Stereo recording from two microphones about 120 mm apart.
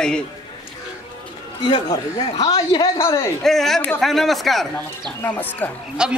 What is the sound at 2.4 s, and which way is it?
Speech, 35° left (ahead or behind).